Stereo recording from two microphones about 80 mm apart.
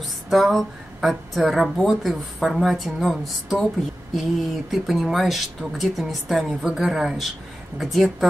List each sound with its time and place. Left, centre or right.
0.0 s a woman's voice: centre